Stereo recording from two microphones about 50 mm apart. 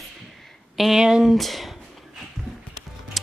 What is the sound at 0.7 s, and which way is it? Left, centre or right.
Speech, centre.